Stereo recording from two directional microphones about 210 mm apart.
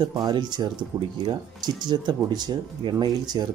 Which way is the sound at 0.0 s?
20° right (ahead or behind).